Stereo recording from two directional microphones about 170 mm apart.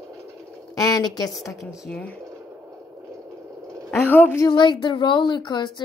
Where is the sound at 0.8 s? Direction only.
20° left (ahead or behind).